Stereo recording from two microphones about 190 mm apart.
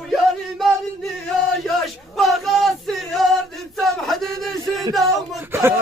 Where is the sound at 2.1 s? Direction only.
Centre (ahead or behind).